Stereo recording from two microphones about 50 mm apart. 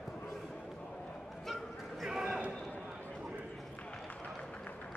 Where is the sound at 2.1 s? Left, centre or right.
Centre.